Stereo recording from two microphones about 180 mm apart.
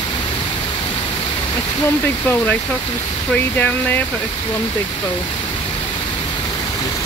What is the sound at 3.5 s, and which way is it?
Speech, 10° left (ahead or behind).